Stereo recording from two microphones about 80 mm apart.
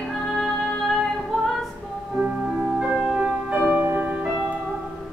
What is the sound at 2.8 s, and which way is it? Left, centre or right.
Music, centre.